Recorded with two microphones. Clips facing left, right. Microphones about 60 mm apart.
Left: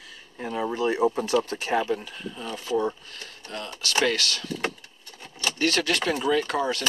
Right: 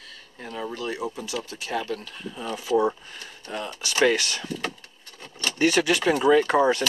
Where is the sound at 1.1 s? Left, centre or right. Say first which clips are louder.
Left 8 dB; left.